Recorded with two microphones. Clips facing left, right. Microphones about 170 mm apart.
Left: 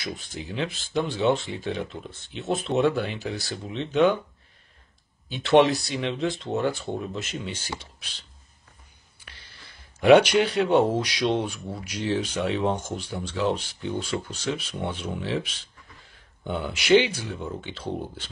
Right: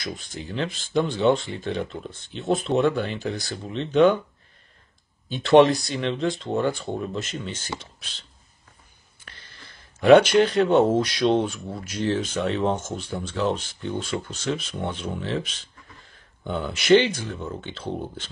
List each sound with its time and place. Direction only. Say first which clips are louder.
0.0 s speech: right 1 dB; 5° left (ahead or behind)
5.3 s speech: right 3 dB; 5° left (ahead or behind)
9.3 s a sound: right 2 dB; 10° left (ahead or behind)
9.9 s speech: right 2 dB; 10° left (ahead or behind)